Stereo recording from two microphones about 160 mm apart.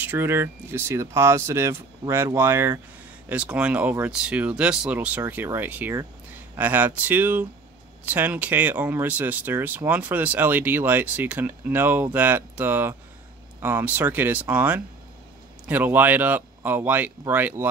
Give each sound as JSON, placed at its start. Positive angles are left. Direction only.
{"t": 0.0, "sound": "speech", "side_deg": -10}